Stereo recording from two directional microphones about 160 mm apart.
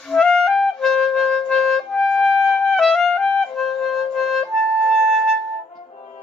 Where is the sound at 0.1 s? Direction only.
Centre (ahead or behind).